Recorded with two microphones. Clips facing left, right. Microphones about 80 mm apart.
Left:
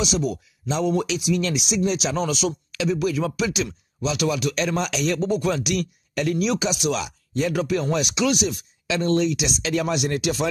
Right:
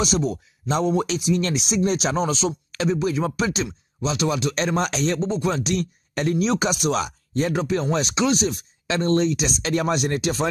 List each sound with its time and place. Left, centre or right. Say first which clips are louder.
0.7 s speech: right 1 dB; right
2.1 s speech: right 1 dB; right